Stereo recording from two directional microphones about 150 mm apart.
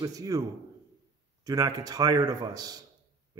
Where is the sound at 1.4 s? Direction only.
25° right (ahead or behind).